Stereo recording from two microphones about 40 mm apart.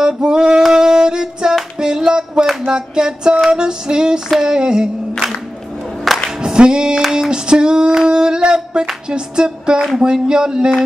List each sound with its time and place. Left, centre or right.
0.0 s music: centre
2.6 s a sound: centre
4.4 s female singing: centre
6.1 s music: centre
6.4 s singing: right
7.0 s a sound: centre